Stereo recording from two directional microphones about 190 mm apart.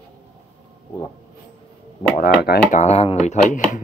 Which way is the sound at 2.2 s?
55° left (ahead or behind).